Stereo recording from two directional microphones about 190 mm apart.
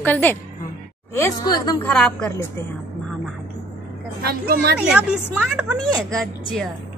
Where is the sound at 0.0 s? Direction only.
10° left (ahead or behind).